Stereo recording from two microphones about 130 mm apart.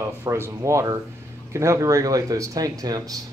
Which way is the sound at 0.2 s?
20° right (ahead or behind).